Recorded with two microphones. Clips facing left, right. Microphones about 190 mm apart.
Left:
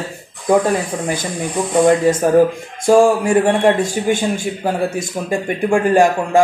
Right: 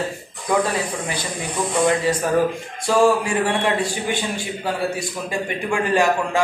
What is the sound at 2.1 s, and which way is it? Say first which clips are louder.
A man's voice: left 7 dB; 45° left (ahead or behind).